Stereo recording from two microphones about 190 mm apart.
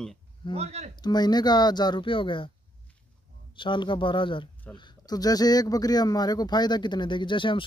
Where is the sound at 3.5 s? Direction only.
25° left (ahead or behind).